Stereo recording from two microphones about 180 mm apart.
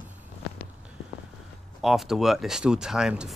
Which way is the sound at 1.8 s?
Centre (ahead or behind).